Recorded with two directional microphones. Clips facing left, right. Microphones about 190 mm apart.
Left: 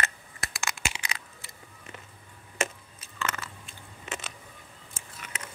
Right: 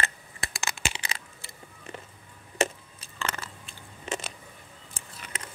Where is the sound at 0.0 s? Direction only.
30° right (ahead or behind).